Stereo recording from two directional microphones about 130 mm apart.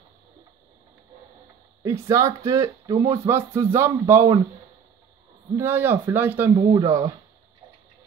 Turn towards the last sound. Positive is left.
turn(degrees=-30)  # may be behind; listen again after turning